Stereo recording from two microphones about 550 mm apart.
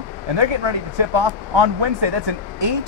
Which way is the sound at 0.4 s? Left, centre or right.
Right.